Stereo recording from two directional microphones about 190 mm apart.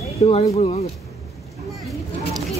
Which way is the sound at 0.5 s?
35° left (ahead or behind).